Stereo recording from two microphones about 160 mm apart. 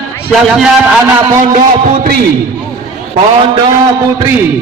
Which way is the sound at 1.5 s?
60° right (ahead or behind).